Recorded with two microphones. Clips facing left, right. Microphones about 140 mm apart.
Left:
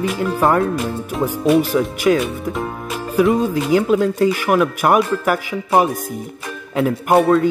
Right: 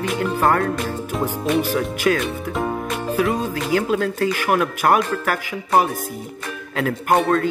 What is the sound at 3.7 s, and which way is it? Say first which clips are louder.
Music: left 4 dB; 15° left (ahead or behind).